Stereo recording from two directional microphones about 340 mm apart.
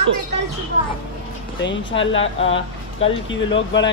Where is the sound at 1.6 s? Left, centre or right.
Left.